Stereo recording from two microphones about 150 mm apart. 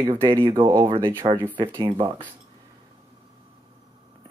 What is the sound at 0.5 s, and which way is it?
Speech, 20° right (ahead or behind).